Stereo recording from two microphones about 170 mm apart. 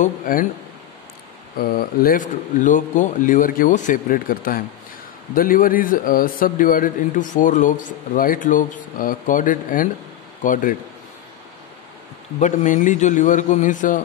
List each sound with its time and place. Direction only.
0.0 s speech: 55° left (ahead or behind)
1.6 s a man's voice: 60° left (ahead or behind)
12.4 s a man's voice: 45° left (ahead or behind)